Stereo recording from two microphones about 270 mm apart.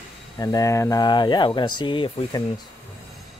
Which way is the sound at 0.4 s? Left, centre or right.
Centre.